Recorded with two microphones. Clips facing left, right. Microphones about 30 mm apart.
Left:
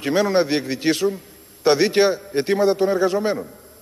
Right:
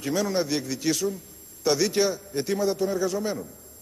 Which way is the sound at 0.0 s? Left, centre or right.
Left.